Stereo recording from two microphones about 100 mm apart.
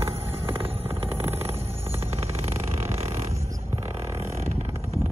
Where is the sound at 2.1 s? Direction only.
90° right.